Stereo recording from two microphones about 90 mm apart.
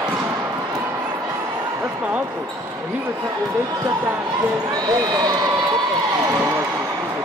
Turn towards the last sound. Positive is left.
turn(degrees=-45)  # may be behind; listen again after turning